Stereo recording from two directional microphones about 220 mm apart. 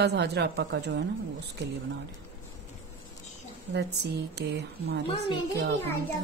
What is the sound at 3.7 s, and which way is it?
A woman's voice, 50° right (ahead or behind).